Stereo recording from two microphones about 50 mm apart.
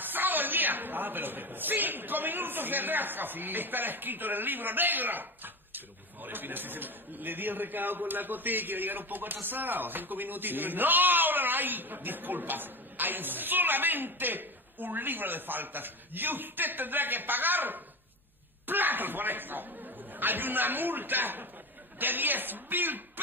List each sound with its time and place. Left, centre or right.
0.0 s a woman's voice: right